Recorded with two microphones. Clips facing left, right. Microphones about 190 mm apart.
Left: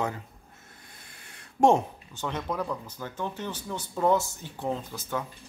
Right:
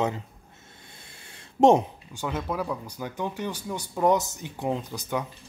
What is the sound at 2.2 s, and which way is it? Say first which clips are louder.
Speech: right 2 dB; 5° right (ahead or behind).